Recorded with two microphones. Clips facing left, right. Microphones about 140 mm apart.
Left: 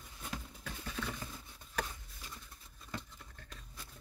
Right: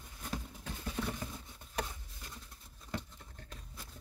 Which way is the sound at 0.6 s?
30° right (ahead or behind).